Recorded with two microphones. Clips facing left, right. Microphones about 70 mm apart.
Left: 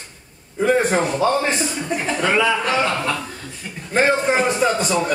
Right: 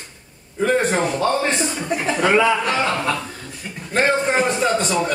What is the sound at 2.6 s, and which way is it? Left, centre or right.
Speech, centre.